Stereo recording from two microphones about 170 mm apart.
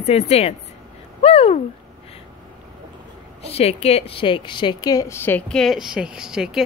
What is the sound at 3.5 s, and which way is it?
A woman's voice, 35° left (ahead or behind).